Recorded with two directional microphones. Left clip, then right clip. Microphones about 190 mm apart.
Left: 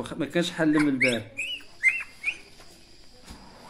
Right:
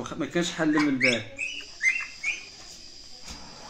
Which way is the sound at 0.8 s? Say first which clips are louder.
Right 2 dB; 20° left (ahead or behind).